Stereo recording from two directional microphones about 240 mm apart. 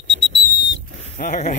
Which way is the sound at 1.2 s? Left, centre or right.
Left.